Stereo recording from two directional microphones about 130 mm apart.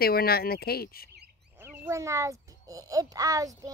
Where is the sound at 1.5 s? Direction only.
15° right (ahead or behind).